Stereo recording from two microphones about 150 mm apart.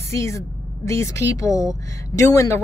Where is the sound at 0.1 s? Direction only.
20° left (ahead or behind).